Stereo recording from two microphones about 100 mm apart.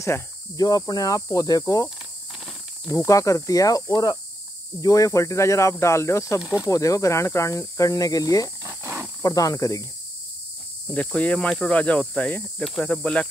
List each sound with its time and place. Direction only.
0.6 s speech: 40° left (ahead or behind)
3.1 s speech: 30° left (ahead or behind)
8.6 s cricket: 25° right (ahead or behind)
9.2 s speech: 35° left (ahead or behind)
10.9 s speech: 15° left (ahead or behind)